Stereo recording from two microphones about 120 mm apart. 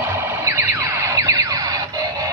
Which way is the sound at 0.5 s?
25° right (ahead or behind).